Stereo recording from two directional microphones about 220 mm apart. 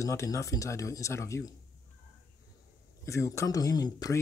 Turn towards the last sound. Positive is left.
turn(degrees=15)  # may be behind; listen again after turning